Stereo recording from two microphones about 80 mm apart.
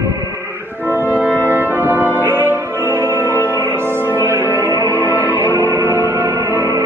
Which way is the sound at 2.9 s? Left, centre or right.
Right.